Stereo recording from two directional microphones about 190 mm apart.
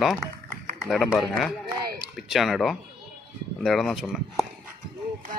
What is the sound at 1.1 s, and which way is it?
Speech, centre (ahead or behind).